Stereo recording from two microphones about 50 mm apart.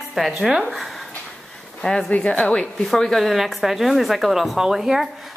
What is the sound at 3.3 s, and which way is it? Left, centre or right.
A woman's voice, centre.